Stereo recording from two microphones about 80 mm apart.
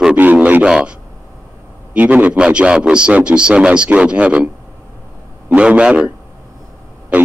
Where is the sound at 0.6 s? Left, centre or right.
Centre.